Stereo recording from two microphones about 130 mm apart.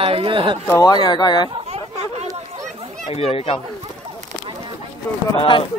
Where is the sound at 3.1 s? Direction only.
50° left (ahead or behind).